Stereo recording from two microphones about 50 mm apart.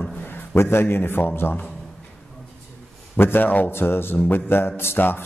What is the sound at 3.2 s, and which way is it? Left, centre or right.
A man's voice, left.